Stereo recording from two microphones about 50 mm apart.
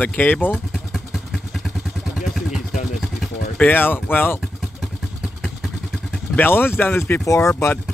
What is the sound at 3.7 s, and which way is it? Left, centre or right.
Speech, left.